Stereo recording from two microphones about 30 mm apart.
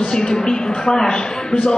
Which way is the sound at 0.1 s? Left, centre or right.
Left.